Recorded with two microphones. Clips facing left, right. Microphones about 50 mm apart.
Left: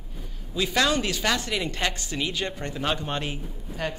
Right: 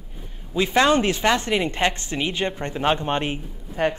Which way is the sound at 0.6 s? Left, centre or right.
Right.